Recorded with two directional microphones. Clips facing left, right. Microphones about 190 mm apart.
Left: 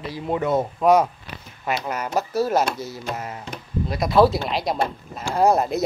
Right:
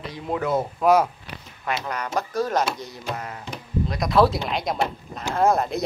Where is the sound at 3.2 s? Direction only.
20° left (ahead or behind).